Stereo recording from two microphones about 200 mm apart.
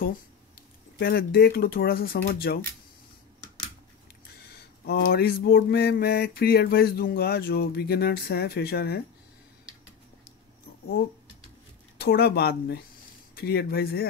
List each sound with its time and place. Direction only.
0.0 s speech: 50° left (ahead or behind)
4.5 s mantra: 50° left (ahead or behind)
12.0 s mantra: 55° left (ahead or behind)